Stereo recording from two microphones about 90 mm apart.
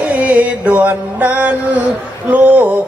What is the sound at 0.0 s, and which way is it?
Music, 15° right (ahead or behind).